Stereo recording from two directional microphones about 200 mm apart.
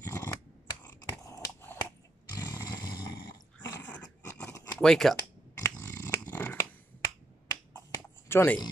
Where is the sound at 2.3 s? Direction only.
20° left (ahead or behind).